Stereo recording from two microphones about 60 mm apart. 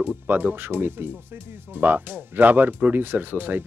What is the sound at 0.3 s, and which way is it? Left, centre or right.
Speech, right.